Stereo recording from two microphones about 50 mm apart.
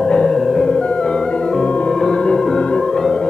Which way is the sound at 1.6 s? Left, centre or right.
Centre.